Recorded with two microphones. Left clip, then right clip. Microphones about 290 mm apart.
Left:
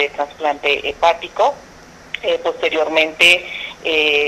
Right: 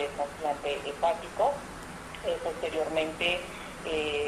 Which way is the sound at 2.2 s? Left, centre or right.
Left.